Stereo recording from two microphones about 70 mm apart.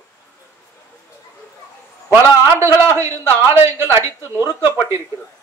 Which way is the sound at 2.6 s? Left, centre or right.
Right.